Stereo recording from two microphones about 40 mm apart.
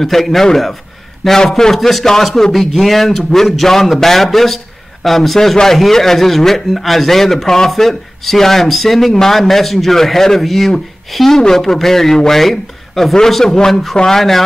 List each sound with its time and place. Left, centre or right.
0.0 s a man's voice: centre